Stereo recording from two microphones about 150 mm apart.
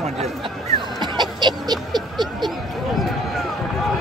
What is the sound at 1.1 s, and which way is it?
Chicken, 30° right (ahead or behind).